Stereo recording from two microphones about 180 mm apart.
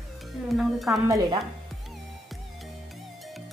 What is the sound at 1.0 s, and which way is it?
Speech, 20° right (ahead or behind).